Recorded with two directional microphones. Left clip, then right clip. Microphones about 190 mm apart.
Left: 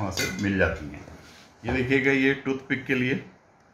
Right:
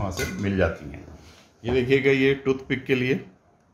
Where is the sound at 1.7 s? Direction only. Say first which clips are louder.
Right 3 dB; 55° right (ahead or behind).